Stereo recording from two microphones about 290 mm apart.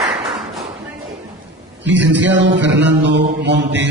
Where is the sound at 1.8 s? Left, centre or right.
Right.